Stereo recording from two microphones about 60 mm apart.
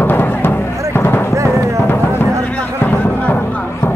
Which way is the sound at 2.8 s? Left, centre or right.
Left.